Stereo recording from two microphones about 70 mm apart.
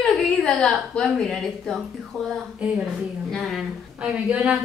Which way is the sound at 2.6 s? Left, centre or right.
Centre.